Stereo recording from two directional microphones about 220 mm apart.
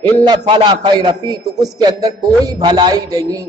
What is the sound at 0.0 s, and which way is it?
A man's voice, 20° right (ahead or behind).